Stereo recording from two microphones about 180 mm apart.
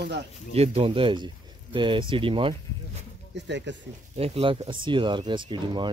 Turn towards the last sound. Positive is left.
turn(degrees=-25)  # may be behind; listen again after turning